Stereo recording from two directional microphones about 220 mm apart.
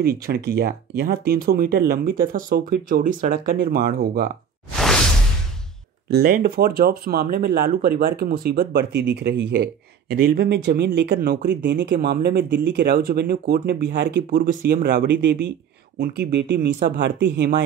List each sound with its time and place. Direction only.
0.0 s speech: 45° right (ahead or behind)
6.1 s speech: 45° right (ahead or behind)